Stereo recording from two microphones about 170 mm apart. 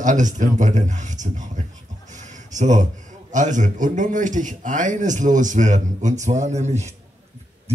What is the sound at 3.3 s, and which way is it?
A man's voice, 45° right (ahead or behind).